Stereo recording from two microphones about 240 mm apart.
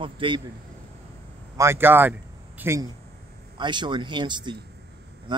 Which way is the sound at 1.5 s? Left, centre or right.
Centre.